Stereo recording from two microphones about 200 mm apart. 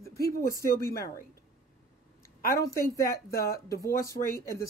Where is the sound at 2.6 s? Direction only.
15° left (ahead or behind).